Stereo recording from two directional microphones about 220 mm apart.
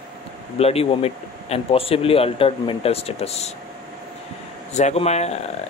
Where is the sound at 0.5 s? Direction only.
25° left (ahead or behind).